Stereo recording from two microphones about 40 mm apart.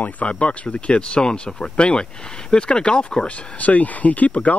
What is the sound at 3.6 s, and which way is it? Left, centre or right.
Speech, left.